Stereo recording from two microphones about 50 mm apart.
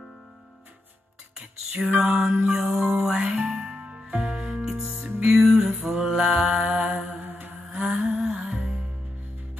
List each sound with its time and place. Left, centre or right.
1.8 s lullaby: centre
2.1 s music: centre
2.4 s music: centre
3.3 s music: right
4.2 s music: centre
5.7 s mantra: centre
7.2 s mantra: right
7.7 s music: centre